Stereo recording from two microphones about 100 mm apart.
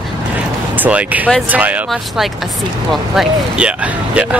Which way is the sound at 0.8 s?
15° right (ahead or behind).